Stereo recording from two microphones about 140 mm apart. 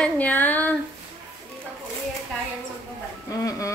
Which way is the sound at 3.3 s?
25° left (ahead or behind).